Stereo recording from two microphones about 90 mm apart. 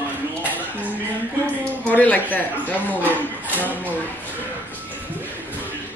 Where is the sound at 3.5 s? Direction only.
20° right (ahead or behind).